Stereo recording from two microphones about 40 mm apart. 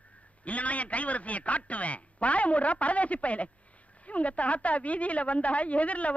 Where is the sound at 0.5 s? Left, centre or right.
Left.